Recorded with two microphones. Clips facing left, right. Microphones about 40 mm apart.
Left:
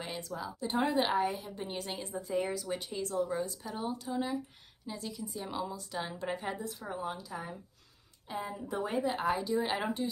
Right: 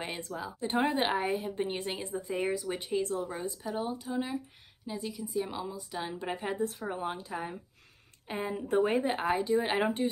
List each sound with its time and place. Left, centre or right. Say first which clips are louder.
0.0 s a sound: right 2 dB; right
0.3 s speech: right 1 dB; centre
0.6 s a woman's voice: right 1 dB; right
2.3 s a woman's voice: right 1 dB; right
3.6 s a woman's voice: right 3 dB; centre
6.6 s a woman's voice: right 5 dB; right
8.3 s a woman's voice: right 6 dB; right